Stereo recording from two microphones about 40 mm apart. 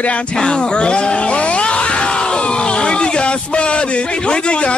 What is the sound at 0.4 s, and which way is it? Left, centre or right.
Speech, left.